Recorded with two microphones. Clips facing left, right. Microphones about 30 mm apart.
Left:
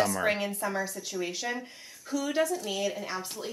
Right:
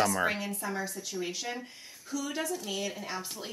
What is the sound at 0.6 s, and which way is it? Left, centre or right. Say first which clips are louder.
A woman's voice: left 3 dB; centre.